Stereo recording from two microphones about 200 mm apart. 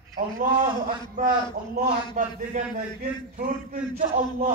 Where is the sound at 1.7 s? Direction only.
45° right (ahead or behind).